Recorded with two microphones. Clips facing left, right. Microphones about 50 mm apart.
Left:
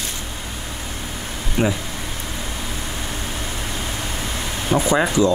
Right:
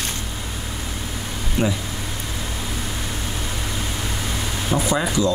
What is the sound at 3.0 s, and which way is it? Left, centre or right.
Vehicle, centre.